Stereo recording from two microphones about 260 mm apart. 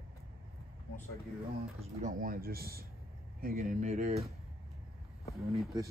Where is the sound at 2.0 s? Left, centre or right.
Right.